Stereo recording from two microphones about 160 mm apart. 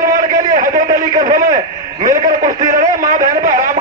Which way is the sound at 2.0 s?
60° right (ahead or behind).